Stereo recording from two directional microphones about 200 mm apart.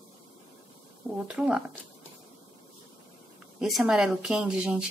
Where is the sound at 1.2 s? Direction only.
5° right (ahead or behind).